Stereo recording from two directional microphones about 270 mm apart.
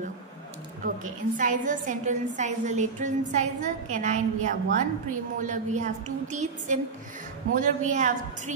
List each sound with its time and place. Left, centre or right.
0.8 s a woman's voice: right